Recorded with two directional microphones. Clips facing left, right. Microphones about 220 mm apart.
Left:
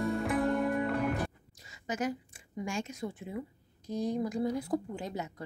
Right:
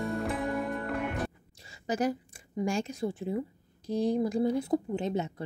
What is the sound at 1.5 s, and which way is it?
A woman's voice, 30° right (ahead or behind).